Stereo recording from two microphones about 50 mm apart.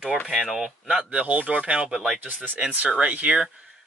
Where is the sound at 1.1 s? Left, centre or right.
Right.